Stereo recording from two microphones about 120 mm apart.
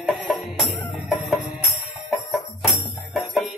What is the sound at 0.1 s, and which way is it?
Music, 40° left (ahead or behind).